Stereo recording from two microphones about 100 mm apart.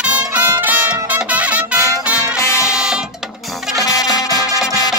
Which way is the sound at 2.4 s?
30° left (ahead or behind).